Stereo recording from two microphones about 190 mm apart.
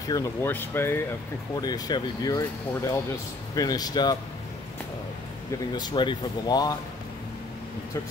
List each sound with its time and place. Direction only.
0.0 s speech: 20° left (ahead or behind)
5.7 s speech: 20° left (ahead or behind)